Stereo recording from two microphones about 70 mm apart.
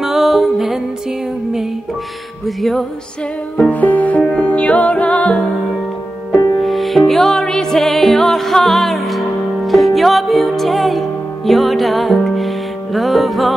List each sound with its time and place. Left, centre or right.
0.0 s music: centre
2.4 s music: centre
3.5 s music: centre
6.6 s music: centre